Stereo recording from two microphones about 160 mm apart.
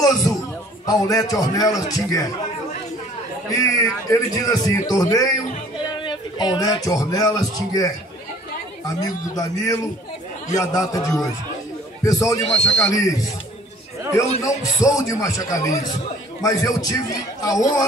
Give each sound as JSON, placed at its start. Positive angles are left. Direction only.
{"t": 0.0, "sound": "a man's voice", "side_deg": 20}
{"t": 3.4, "sound": "a man's voice", "side_deg": 20}
{"t": 14.4, "sound": "a man's voice", "side_deg": 20}
{"t": 15.7, "sound": "a man's voice", "side_deg": 50}
{"t": 16.4, "sound": "a man's voice", "side_deg": 20}